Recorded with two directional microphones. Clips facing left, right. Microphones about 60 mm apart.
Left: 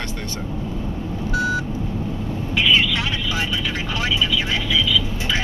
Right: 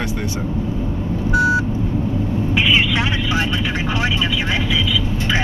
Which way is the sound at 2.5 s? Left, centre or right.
Centre.